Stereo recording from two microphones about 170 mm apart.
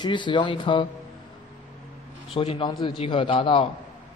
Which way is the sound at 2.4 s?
35° left (ahead or behind).